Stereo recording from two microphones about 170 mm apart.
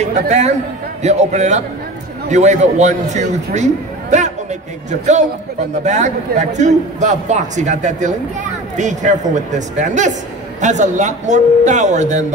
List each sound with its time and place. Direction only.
0.0 s a man's voice: 40° right (ahead or behind)
5.9 s a man's voice: 45° right (ahead or behind)